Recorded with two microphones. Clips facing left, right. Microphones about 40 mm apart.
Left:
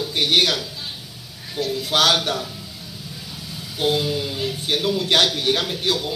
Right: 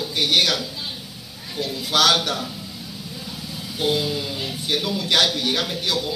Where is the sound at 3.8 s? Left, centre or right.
Left.